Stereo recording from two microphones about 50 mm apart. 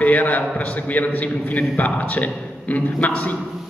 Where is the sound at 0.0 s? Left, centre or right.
Left.